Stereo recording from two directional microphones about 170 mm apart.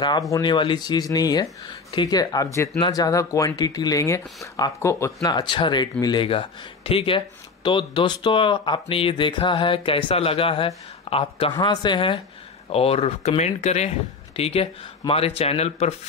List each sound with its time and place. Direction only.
0.3 s speech: 25° left (ahead or behind)